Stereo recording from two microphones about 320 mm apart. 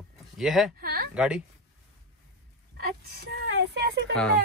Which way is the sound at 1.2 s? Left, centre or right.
Centre.